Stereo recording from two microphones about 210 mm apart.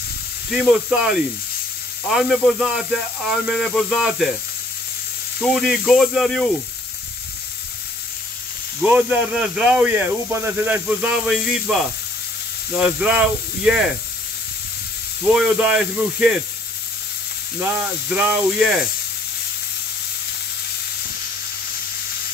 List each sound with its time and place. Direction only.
0.5 s speech: centre (ahead or behind)
5.4 s speech: centre (ahead or behind)
8.8 s speech: 5° right (ahead or behind)
15.3 s speech: 5° right (ahead or behind)
17.6 s speech: 5° right (ahead or behind)